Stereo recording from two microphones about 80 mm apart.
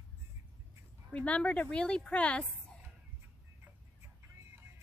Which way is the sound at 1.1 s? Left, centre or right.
Centre.